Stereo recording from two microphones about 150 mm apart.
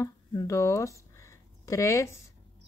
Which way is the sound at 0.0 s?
20° left (ahead or behind).